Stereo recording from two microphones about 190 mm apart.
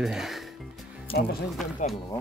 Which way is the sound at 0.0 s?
Centre (ahead or behind).